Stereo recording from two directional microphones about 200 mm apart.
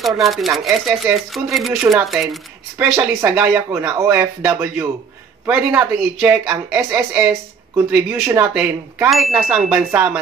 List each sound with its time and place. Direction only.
0.0 s speech: centre (ahead or behind)
2.8 s speech: 10° right (ahead or behind)